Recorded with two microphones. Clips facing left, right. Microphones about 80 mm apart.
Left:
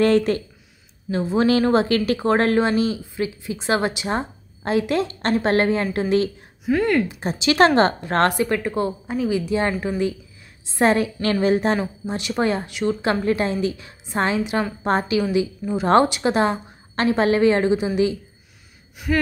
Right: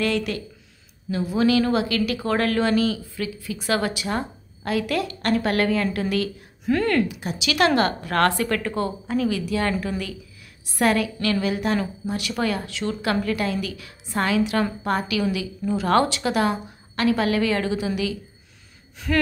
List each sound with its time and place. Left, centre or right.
0.0 s speech: left
6.6 s speech: centre
7.1 s speech: left
11.8 s speech: left
19.0 s speech: centre